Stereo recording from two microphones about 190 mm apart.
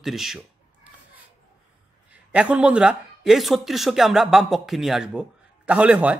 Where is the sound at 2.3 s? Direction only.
5° right (ahead or behind).